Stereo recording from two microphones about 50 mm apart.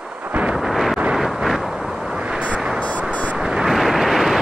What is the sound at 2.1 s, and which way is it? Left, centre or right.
Vehicle, right.